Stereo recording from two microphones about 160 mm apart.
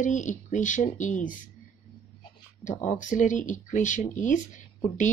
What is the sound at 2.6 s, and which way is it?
Speech, 50° left (ahead or behind).